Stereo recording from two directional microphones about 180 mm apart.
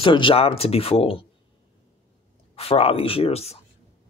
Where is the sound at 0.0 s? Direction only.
30° left (ahead or behind).